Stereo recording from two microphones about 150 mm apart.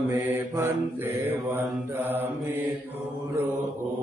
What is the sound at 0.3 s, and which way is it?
Mantra, 15° right (ahead or behind).